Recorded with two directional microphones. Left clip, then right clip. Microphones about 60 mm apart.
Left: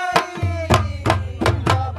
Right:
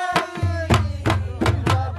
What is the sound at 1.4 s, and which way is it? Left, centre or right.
Music, left.